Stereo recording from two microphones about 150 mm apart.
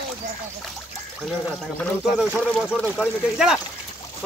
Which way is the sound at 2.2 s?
5° right (ahead or behind).